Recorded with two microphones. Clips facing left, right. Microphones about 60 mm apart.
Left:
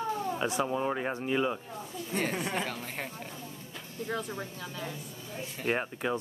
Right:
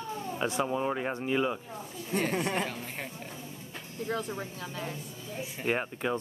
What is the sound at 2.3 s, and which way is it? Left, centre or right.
Speech, right.